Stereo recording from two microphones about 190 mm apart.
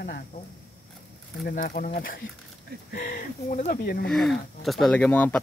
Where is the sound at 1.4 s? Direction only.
45° left (ahead or behind).